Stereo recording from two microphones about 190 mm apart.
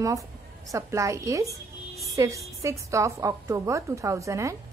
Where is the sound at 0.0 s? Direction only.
15° right (ahead or behind).